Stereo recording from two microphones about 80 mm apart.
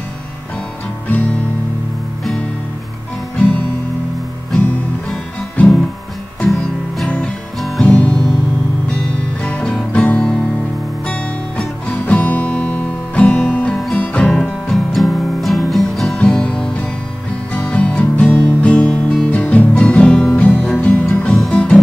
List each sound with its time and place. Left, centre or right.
1.0 s music: centre
5.6 s music: centre
7.8 s music: centre
9.4 s music: centre
16.2 s music: centre